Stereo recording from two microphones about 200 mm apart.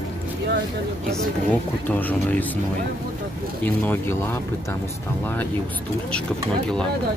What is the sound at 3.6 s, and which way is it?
Speech, 10° left (ahead or behind).